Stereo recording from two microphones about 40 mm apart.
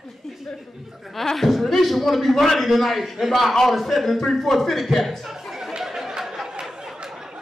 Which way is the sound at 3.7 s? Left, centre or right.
Centre.